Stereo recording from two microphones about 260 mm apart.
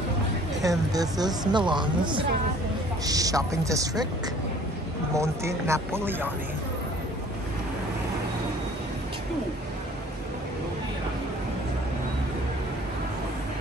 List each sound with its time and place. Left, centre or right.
0.6 s speech: centre
5.1 s speech: centre